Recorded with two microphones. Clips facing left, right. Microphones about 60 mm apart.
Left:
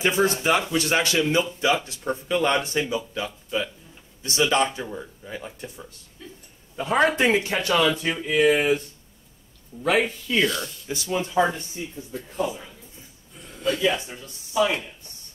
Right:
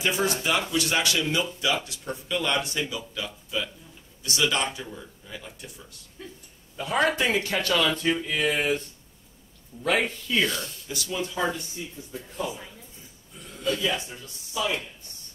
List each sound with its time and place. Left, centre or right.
0.0 s speech: left
7.0 s speech: left
9.8 s speech: centre
10.9 s speech: left
13.6 s speech: left